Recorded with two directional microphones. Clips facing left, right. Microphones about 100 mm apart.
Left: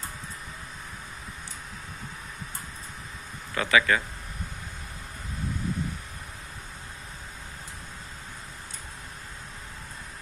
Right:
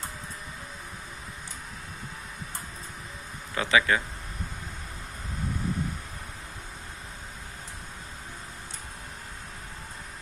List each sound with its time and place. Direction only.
3.5 s speech: 25° right (ahead or behind)